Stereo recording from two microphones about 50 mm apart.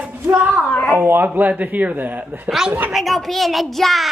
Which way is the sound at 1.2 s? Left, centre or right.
Right.